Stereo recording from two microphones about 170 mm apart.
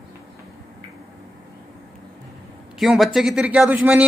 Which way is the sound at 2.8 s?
Centre (ahead or behind).